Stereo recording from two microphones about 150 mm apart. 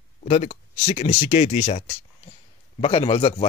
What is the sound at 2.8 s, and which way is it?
Speech, 35° left (ahead or behind).